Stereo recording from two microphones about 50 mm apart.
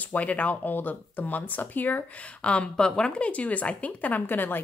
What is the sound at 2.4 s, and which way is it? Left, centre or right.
A woman's voice, left.